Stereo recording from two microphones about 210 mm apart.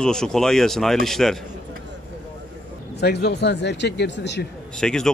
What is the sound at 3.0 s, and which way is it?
Speech, 50° left (ahead or behind).